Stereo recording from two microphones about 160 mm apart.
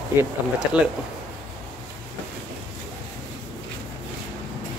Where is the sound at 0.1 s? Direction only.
15° right (ahead or behind).